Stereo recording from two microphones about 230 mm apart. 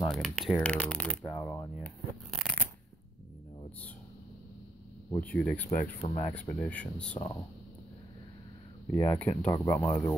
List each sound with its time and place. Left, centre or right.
0.1 s speech: centre
2.3 s shuffling cards: centre
5.2 s speech: centre
5.7 s speech: left
6.3 s speech: centre
8.9 s speech: centre